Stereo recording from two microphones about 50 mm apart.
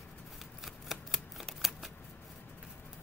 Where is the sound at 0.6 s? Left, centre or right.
Centre.